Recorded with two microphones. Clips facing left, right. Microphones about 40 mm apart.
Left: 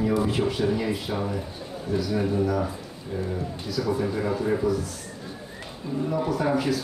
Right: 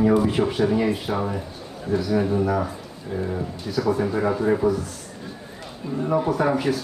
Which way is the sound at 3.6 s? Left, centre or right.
Right.